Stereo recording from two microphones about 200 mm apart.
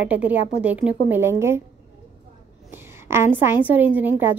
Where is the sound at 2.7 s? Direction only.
10° right (ahead or behind).